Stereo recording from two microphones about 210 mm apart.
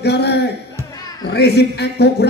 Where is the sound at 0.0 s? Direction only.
50° left (ahead or behind).